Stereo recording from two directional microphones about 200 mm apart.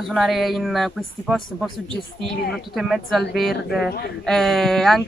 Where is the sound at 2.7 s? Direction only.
Centre (ahead or behind).